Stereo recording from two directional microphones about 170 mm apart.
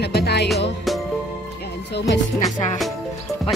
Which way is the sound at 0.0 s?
70° left (ahead or behind).